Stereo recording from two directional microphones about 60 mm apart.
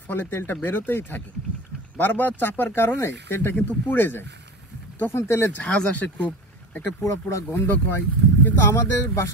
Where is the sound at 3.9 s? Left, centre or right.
Left.